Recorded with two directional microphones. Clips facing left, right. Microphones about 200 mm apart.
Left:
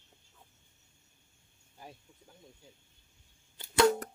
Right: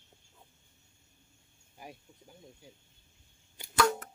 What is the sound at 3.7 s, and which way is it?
Scissors, 35° left (ahead or behind).